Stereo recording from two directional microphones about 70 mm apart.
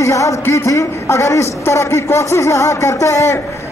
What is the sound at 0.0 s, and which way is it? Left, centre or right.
A man's voice, left.